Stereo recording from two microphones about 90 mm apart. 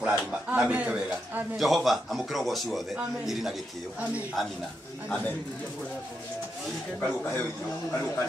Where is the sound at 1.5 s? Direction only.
Centre (ahead or behind).